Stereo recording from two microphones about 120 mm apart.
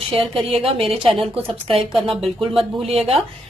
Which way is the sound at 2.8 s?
55° right (ahead or behind).